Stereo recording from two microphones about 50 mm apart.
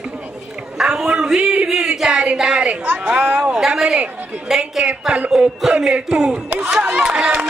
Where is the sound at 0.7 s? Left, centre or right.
Centre.